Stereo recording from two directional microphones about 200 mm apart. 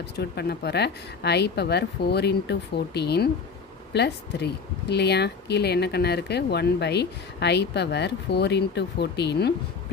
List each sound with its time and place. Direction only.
0.1 s speech: 55° left (ahead or behind)